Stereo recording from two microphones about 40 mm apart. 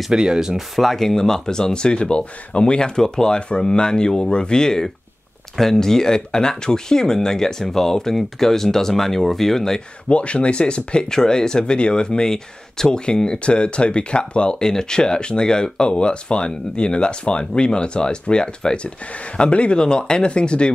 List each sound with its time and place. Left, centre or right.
0.1 s speech: centre
0.6 s speech: centre
10.0 s speech: left